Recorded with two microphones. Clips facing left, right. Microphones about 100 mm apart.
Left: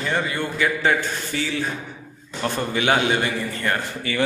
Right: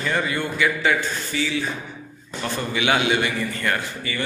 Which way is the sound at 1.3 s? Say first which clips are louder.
Right 2 dB; 50° left (ahead or behind).